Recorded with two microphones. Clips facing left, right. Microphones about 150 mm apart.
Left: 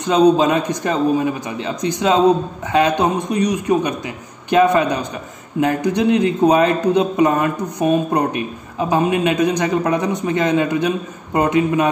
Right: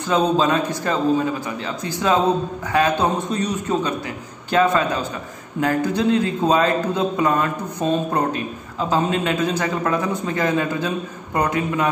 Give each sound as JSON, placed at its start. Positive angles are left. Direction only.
{"t": 0.0, "sound": "a man's voice", "side_deg": 20}